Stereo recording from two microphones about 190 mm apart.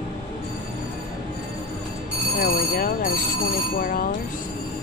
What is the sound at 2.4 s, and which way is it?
Speech, 50° left (ahead or behind).